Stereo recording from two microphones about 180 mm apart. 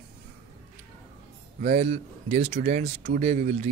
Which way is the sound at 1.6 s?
40° right (ahead or behind).